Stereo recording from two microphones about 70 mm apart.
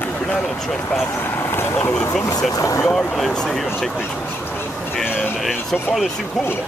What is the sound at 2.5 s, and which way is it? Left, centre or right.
Speech, left.